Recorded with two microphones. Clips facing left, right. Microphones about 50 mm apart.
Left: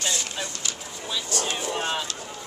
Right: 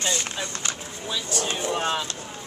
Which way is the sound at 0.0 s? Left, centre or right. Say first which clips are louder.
Right 2 dB; right.